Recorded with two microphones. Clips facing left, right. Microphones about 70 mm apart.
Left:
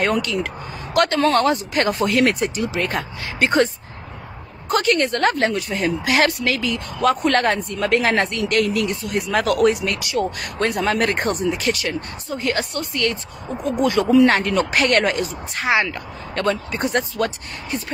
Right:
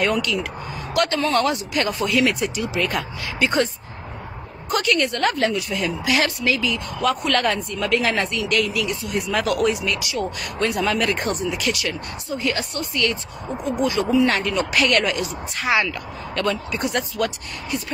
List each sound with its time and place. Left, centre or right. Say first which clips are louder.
0.0 s speech: left 1 dB; left
3.3 s speech: left 3 dB; left